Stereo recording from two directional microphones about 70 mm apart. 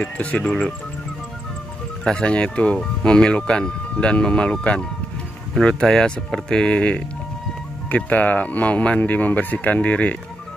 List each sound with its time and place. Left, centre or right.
0.0 s speech: centre
2.0 s speech: centre